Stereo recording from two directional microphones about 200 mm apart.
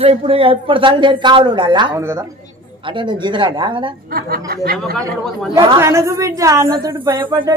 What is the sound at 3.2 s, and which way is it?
Speech, 25° right (ahead or behind).